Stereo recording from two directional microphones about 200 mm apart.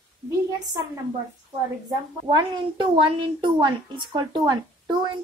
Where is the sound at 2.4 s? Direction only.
25° right (ahead or behind).